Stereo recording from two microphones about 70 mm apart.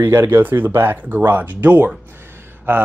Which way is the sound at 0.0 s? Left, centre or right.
Right.